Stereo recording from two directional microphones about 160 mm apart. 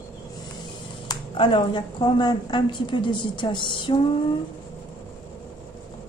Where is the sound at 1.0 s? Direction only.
30° left (ahead or behind).